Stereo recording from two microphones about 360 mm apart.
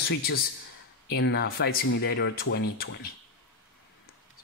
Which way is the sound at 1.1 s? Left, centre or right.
Left.